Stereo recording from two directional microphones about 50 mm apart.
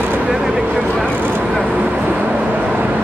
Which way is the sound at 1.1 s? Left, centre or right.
Right.